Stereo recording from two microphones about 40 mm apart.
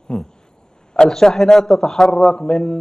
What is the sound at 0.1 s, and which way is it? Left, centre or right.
A man's voice, centre.